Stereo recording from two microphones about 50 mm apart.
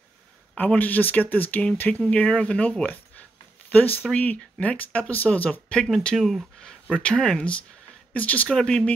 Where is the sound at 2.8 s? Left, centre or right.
Left.